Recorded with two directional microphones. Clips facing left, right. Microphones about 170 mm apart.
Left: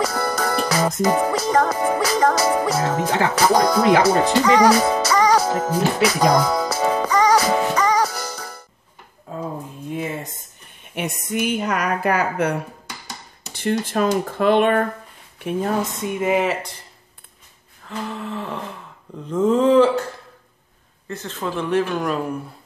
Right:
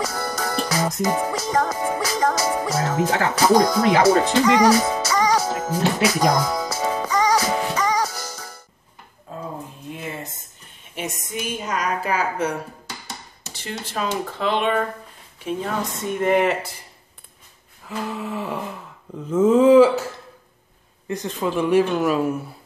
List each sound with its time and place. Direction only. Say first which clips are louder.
0.0 s music: left 4 dB; 65° left (ahead or behind)
11.0 s speech: left 5 dB; 60° left (ahead or behind)
16.1 s speech: right 2 dB; 5° left (ahead or behind)
17.8 s a sound: right 1 dB; 5° right (ahead or behind)
21.1 s a sound: right 3 dB; 15° right (ahead or behind)
21.9 s speech: right 3 dB; 5° right (ahead or behind)